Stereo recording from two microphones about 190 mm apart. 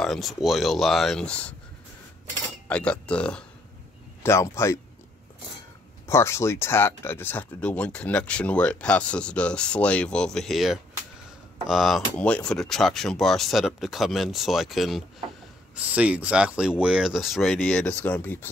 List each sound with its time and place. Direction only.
0.0 s speech: centre (ahead or behind)
2.7 s speech: 5° left (ahead or behind)
6.0 s speech: 15° left (ahead or behind)